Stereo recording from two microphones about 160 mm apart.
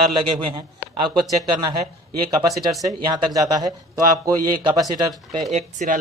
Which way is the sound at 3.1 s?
25° right (ahead or behind).